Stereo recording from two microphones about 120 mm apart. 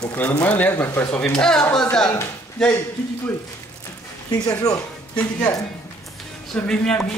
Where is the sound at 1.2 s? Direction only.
5° left (ahead or behind).